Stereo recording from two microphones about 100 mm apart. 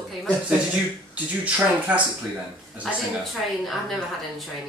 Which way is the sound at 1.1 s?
15° right (ahead or behind).